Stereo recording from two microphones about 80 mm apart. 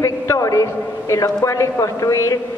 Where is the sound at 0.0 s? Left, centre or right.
Left.